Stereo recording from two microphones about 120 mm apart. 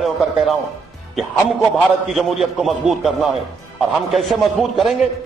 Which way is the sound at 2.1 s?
Centre (ahead or behind).